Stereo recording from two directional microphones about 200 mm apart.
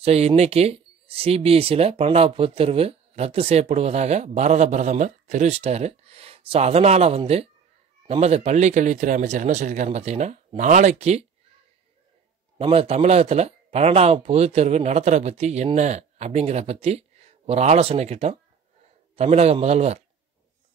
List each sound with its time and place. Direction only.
0.0 s speech: 30° right (ahead or behind)
12.5 s speech: 30° right (ahead or behind)